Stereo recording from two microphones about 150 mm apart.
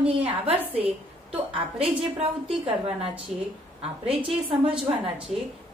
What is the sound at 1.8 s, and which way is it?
A woman's voice, 40° right (ahead or behind).